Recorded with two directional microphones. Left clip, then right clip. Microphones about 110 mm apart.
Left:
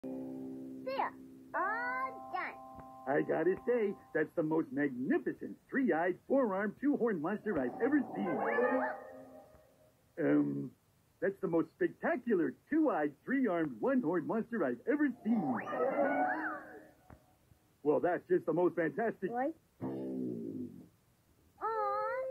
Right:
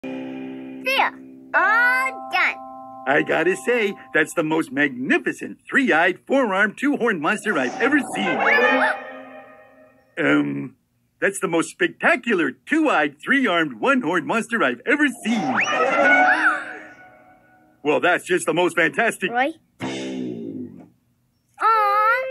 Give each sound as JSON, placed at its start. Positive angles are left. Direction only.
{"t": 0.1, "sound": "music", "side_deg": 20}
{"t": 2.3, "sound": "speech", "side_deg": 35}
{"t": 15.6, "sound": "music", "side_deg": 35}
{"t": 17.8, "sound": "speech", "side_deg": 25}
{"t": 21.5, "sound": "a sound", "side_deg": 30}